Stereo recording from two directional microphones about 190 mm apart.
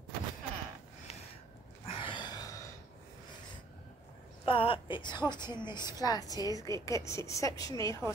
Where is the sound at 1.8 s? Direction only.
25° left (ahead or behind).